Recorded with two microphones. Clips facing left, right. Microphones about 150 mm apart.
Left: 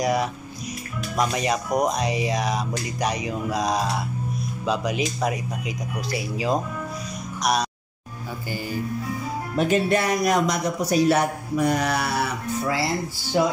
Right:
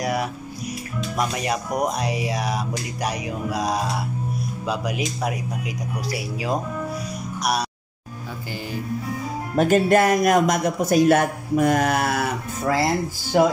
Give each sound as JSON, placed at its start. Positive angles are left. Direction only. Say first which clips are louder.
{"t": 0.0, "sound": "speech", "louder": "left 2 dB", "side_deg": -5}
{"t": 1.1, "sound": "music", "louder": "left 2 dB", "side_deg": -5}
{"t": 9.6, "sound": "a man's voice", "louder": "right 4 dB", "side_deg": -45}